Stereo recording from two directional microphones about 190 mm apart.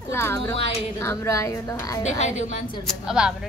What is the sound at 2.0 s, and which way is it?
Speech, 35° left (ahead or behind).